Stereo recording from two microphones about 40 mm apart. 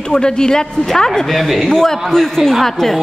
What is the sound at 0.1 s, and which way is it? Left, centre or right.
Speech, centre.